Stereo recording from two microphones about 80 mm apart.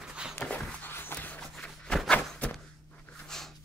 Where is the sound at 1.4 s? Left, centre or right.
Centre.